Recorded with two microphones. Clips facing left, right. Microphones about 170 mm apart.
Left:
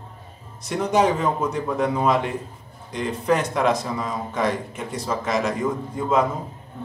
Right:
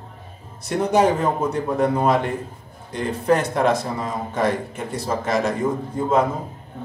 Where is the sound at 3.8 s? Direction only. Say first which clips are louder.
Right 1 dB; 35° right (ahead or behind).